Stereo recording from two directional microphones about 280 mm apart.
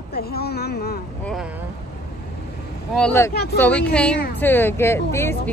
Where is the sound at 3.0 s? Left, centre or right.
Centre.